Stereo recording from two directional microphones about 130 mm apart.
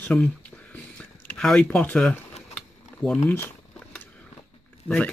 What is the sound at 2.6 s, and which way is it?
Camera, 5° left (ahead or behind).